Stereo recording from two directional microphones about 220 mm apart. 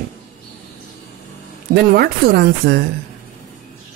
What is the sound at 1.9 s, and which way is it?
Music, 45° right (ahead or behind).